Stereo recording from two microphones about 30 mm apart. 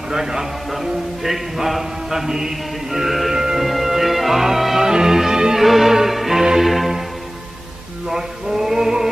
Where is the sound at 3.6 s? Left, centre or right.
Centre.